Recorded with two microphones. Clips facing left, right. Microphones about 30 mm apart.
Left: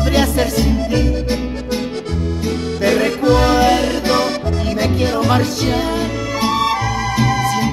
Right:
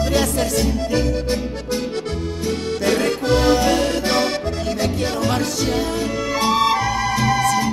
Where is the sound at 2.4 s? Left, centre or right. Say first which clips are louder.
Left 3 dB; centre.